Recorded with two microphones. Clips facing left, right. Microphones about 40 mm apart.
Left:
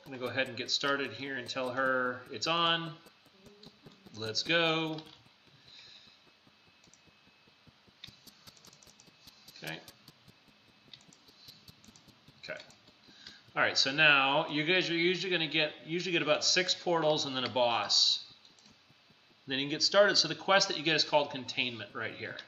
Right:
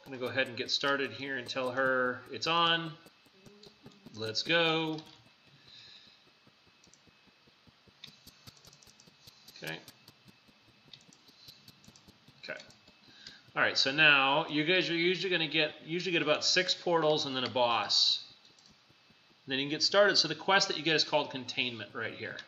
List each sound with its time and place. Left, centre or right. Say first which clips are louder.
0.2 s speech: right 1 dB; centre
4.2 s speech: right 1 dB; centre
4.9 s speech: right 1 dB; centre
9.5 s a sound: right 1 dB; centre
12.4 s burping: even; centre
13.3 s speech: even; centre
19.4 s speech: even; centre